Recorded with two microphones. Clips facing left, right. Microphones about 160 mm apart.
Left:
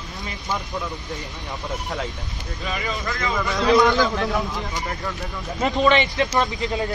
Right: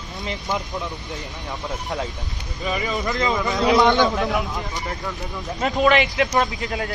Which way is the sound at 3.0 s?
20° right (ahead or behind).